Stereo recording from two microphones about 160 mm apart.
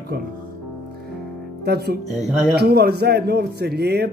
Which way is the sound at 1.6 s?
90° right.